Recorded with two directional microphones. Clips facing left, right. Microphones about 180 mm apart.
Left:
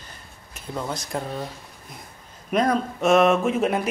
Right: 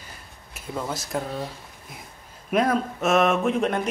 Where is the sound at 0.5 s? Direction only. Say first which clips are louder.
Even; 5° right (ahead or behind).